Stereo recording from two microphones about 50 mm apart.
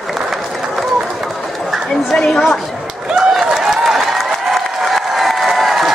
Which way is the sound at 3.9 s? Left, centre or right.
Centre.